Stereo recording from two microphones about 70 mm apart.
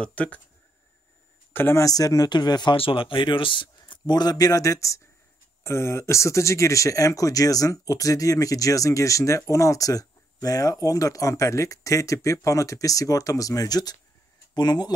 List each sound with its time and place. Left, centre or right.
0.0 s speech: centre
1.5 s speech: left
1.8 s speech: left
4.0 s speech: left
14.5 s speech: left